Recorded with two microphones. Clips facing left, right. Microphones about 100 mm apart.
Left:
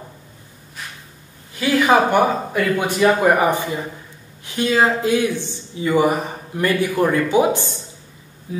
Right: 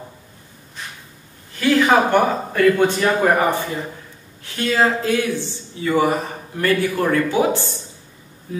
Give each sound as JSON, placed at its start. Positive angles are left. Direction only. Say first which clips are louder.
{"t": 1.6, "sound": "speech", "louder": "even", "side_deg": 10}